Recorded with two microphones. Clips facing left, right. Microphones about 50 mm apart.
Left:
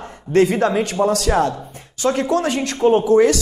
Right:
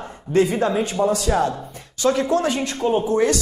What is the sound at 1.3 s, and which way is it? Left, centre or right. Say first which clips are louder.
Speech: left 3 dB; centre.